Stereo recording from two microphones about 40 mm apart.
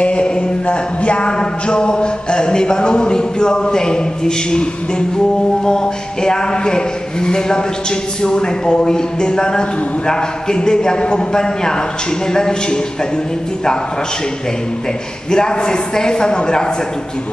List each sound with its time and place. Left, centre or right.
0.0 s a sound: left
5.7 s a man's voice: centre
15.3 s a man's voice: centre